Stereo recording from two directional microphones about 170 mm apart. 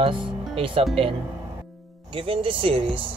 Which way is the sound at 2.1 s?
30° right (ahead or behind).